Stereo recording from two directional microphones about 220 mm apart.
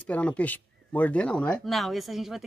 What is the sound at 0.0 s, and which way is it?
Speech, 5° left (ahead or behind).